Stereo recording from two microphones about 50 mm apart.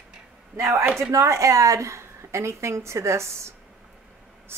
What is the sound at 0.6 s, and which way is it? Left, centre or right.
A man's voice, right.